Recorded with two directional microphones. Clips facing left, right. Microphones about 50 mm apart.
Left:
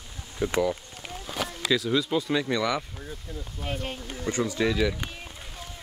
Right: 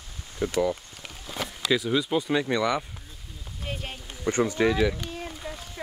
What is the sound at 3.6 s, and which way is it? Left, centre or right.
Speech, centre.